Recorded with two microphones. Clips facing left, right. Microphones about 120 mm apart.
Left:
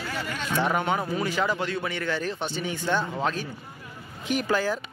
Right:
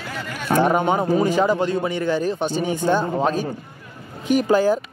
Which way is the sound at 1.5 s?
15° right (ahead or behind).